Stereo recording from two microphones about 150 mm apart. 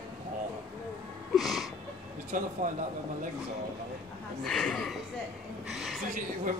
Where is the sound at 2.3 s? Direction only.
60° right (ahead or behind).